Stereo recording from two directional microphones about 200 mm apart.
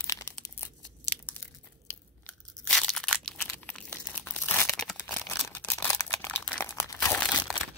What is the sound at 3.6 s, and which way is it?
Crumpling, 5° left (ahead or behind).